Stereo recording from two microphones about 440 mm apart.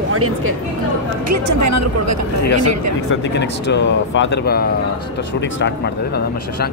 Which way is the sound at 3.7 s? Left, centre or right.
Left.